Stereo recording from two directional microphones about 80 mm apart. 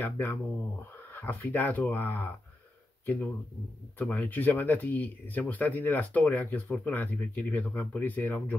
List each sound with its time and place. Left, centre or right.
0.0 s speech: left
4.0 s speech: left